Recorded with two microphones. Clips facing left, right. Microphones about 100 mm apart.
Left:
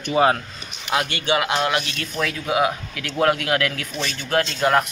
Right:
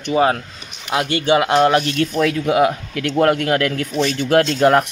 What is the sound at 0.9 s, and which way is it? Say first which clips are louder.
Speech: right 2 dB; 15° right (ahead or behind).